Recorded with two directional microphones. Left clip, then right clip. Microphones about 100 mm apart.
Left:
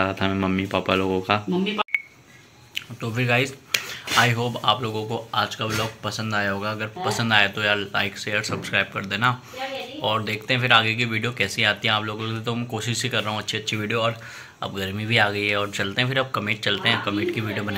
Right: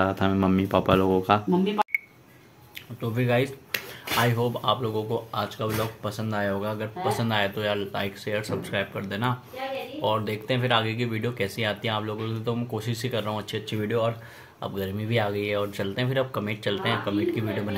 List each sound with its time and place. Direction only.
0.1 s speech: 35° right (ahead or behind)
3.2 s speech: 25° right (ahead or behind)